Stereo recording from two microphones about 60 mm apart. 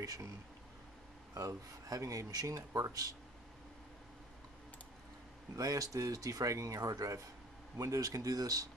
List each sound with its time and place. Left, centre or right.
0.0 s speech: right
1.3 s speech: right
5.6 s speech: right